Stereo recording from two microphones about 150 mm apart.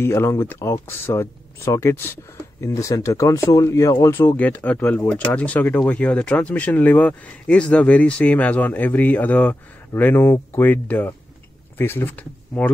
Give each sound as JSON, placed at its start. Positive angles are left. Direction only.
{"t": 0.0, "sound": "speech", "side_deg": 15}